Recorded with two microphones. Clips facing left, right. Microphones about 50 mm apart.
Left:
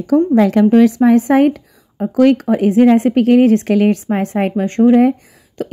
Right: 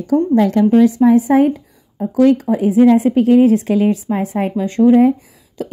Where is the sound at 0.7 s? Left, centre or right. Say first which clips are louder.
Left 1 dB; left.